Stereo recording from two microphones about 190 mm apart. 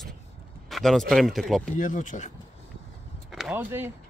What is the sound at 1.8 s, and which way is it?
Speech, 40° left (ahead or behind).